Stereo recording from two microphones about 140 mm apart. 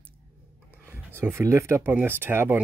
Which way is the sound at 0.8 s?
15° right (ahead or behind).